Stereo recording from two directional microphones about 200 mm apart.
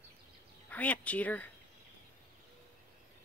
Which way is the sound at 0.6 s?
10° left (ahead or behind).